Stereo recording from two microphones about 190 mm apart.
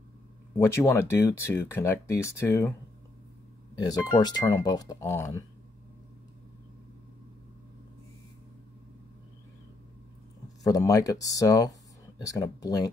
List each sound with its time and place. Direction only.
0.6 s speech: 15° left (ahead or behind)
3.7 s speech: 20° left (ahead or behind)
10.6 s speech: 20° left (ahead or behind)